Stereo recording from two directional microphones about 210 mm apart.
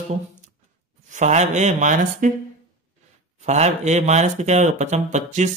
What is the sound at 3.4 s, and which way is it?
Speech, 35° right (ahead or behind).